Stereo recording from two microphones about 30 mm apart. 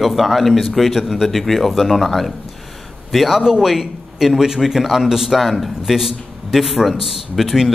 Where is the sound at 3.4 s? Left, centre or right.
Centre.